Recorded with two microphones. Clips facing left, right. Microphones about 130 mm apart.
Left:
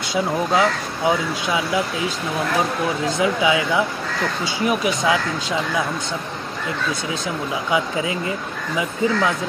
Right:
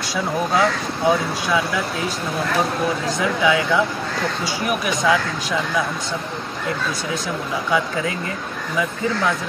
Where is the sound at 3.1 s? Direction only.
20° left (ahead or behind).